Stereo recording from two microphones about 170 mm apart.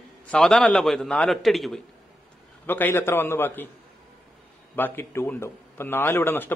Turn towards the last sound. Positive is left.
turn(degrees=10)  # may be behind; listen again after turning